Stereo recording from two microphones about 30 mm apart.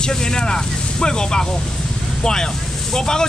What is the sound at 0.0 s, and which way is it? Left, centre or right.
Speech, left.